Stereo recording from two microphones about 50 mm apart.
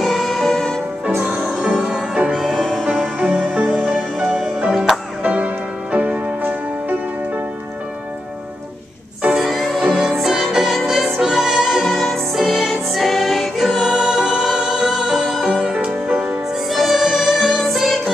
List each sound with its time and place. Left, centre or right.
0.0 s music: centre
1.6 s music: centre
2.3 s music: centre
3.2 s music: centre
5.2 s music: right
9.3 s music: centre
10.1 s music: centre
15.4 s music: centre
16.6 s music: centre